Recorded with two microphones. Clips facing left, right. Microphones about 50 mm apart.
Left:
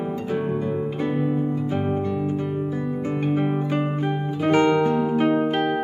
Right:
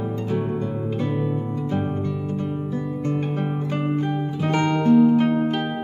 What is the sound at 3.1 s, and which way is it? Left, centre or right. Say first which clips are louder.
Guitar: left 3 dB; centre.